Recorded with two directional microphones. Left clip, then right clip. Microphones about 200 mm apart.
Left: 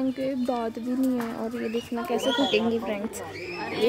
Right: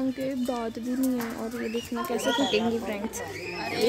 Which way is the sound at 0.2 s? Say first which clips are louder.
Left 2 dB; 5° left (ahead or behind).